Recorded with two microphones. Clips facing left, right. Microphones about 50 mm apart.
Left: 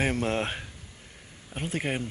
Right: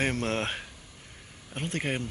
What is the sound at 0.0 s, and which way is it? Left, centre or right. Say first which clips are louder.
Speech: left 1 dB; centre.